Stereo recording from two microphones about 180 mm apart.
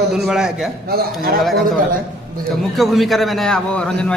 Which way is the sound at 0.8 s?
60° right (ahead or behind).